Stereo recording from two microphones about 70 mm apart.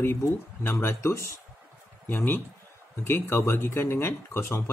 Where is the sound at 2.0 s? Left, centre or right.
Left.